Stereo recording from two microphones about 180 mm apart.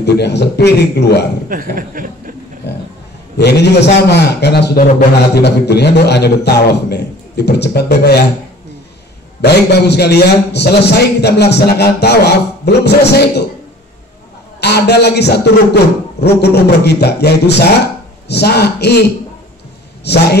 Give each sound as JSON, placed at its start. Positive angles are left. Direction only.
{"t": 0.0, "sound": "a man's voice", "side_deg": 70}
{"t": 1.5, "sound": "chuckle", "side_deg": -50}
{"t": 3.3, "sound": "a man's voice", "side_deg": 65}
{"t": 9.4, "sound": "a man's voice", "side_deg": 65}
{"t": 14.6, "sound": "a man's voice", "side_deg": 65}
{"t": 20.1, "sound": "a man's voice", "side_deg": 70}